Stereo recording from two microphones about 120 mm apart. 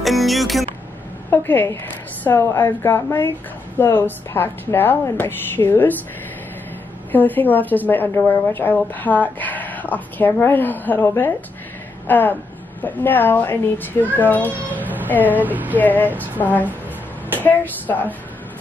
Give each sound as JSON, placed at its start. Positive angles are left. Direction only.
{"t": 0.0, "sound": "speech", "side_deg": 0}
{"t": 1.3, "sound": "a woman's voice", "side_deg": 15}
{"t": 7.1, "sound": "a woman's voice", "side_deg": 15}
{"t": 15.2, "sound": "speech", "side_deg": -15}
{"t": 15.7, "sound": "a woman's voice", "side_deg": 15}